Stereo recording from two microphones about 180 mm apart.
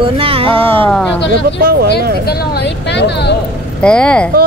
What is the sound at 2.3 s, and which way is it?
Speech, 65° left (ahead or behind).